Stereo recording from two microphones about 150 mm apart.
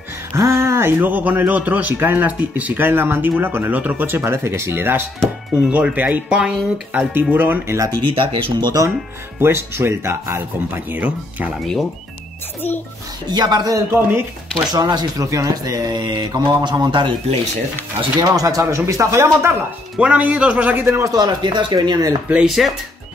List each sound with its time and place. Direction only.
0.3 s speech: 20° right (ahead or behind)
8.1 s speech: 35° right (ahead or behind)
9.4 s speech: 15° right (ahead or behind)
13.3 s speech: 30° right (ahead or behind)
14.7 s speech: 25° right (ahead or behind)
20.0 s speech: 10° right (ahead or behind); by 22.1 s 25° right (ahead or behind)
22.3 s speech: 5° right (ahead or behind)